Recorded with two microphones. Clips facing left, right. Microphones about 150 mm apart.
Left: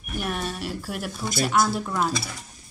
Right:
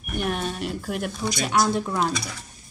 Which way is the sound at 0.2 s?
5° left (ahead or behind).